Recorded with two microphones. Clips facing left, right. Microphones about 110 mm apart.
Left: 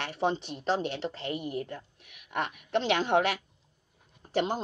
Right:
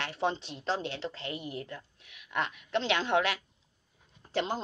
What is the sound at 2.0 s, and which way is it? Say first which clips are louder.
A woman's voice: even; 55° left (ahead or behind).